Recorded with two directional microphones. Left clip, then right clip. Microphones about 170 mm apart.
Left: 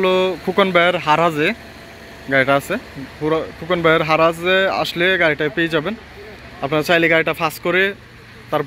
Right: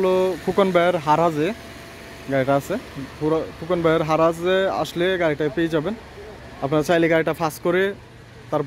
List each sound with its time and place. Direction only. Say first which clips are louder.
0.0 s speech: left 3 dB; 10° right (ahead or behind)